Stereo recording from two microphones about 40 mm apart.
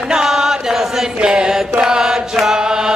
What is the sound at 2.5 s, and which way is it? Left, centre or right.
Chant, centre.